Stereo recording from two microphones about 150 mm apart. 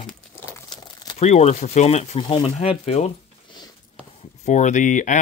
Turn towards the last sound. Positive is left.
turn(degrees=55)  # may be behind; listen again after turning